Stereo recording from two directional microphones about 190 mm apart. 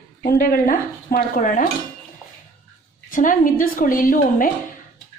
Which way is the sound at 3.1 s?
45° left (ahead or behind).